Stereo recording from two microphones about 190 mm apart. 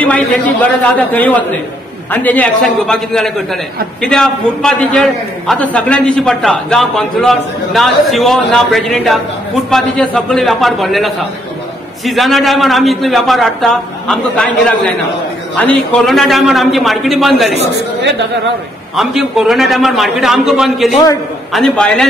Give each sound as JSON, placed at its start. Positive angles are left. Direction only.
{"t": 0.0, "sound": "a man's voice", "side_deg": 5}
{"t": 15.5, "sound": "a man's voice", "side_deg": 5}
{"t": 18.9, "sound": "a man's voice", "side_deg": 0}